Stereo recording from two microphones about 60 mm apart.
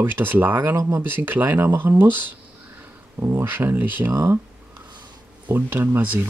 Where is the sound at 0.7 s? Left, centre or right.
Right.